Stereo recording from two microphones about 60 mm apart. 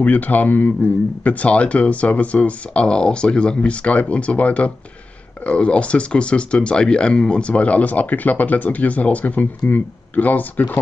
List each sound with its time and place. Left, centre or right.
0.0 s speech: left